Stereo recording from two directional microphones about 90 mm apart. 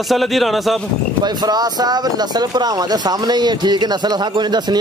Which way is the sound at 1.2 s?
50° right (ahead or behind).